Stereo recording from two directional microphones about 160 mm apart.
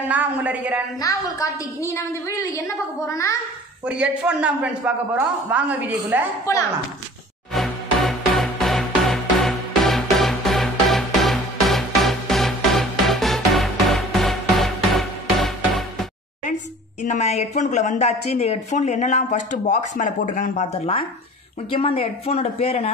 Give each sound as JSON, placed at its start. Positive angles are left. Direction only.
{"t": 0.1, "sound": "a man's voice", "side_deg": -10}
{"t": 1.0, "sound": "a woman's voice", "side_deg": 20}
{"t": 3.8, "sound": "a man's voice", "side_deg": -5}
{"t": 6.5, "sound": "a woman's voice", "side_deg": 20}
{"t": 7.5, "sound": "music", "side_deg": 0}
{"t": 17.0, "sound": "a woman's voice", "side_deg": 45}